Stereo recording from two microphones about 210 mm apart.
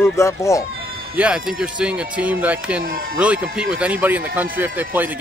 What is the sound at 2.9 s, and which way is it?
Speech, 40° right (ahead or behind).